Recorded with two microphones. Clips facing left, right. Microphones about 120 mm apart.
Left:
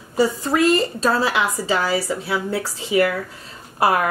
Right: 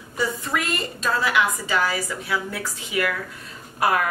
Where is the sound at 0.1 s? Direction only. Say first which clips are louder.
Left 7 dB; 35° left (ahead or behind).